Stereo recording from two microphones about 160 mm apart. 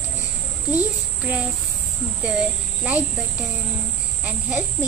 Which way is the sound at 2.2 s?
10° right (ahead or behind).